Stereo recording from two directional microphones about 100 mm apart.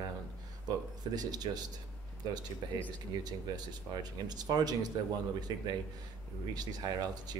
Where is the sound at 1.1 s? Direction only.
40° right (ahead or behind).